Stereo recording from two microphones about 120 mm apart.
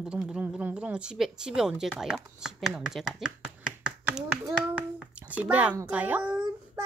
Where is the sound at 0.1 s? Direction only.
10° right (ahead or behind).